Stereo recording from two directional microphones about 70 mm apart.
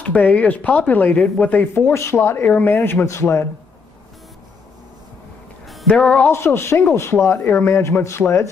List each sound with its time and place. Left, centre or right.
0.0 s speech: left
2.0 s speech: left
5.9 s speech: centre
6.2 s speech: left